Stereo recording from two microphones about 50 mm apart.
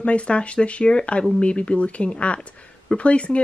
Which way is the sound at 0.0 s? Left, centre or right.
Left.